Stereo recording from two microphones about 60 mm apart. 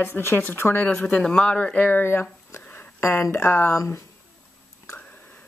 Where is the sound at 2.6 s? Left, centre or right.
Left.